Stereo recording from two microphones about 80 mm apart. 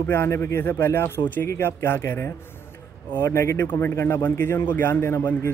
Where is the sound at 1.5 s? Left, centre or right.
Left.